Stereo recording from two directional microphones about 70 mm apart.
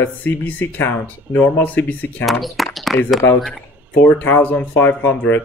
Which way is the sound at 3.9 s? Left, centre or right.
Left.